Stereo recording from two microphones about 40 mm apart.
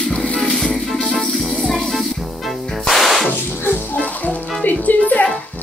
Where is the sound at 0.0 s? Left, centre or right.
Left.